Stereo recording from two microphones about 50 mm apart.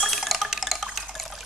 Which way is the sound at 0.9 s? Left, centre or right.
Centre.